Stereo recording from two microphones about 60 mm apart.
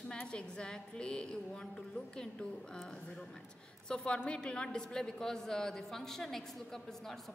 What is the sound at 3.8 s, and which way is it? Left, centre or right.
A woman's voice, centre.